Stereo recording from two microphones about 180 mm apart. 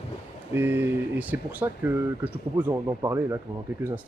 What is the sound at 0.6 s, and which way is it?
Speech, 10° right (ahead or behind).